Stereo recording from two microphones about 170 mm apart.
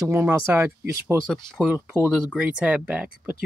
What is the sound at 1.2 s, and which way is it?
Speech, centre (ahead or behind).